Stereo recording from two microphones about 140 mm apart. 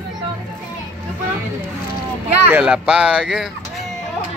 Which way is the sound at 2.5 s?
10° right (ahead or behind).